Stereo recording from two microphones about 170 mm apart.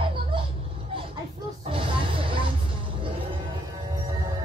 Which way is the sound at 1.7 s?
30° right (ahead or behind).